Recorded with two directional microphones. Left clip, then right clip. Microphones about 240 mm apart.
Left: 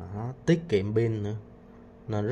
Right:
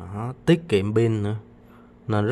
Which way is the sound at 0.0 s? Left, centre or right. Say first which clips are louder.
Right 5 dB; centre.